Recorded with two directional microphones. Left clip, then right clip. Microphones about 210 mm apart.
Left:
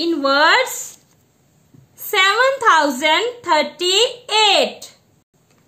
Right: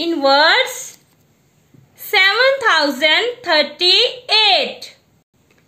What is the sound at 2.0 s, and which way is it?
A woman's voice, 25° left (ahead or behind).